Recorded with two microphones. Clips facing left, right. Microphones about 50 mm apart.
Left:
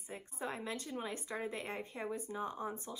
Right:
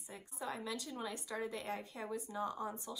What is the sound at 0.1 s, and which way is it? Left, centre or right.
Speech, left.